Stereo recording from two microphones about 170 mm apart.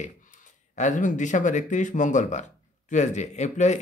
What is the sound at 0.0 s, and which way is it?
Speech, 45° left (ahead or behind).